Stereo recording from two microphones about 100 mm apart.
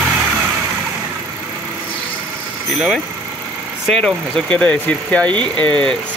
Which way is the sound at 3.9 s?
5° left (ahead or behind).